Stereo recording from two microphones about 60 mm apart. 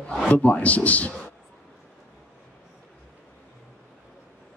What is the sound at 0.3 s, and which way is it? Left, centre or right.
Speech, left.